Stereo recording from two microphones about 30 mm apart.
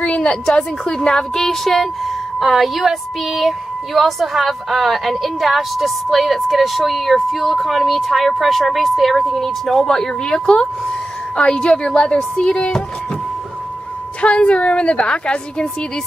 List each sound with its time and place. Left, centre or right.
0.0 s a sound: left
0.9 s a woman's voice: left
10.5 s a woman's voice: left
14.2 s a woman's voice: left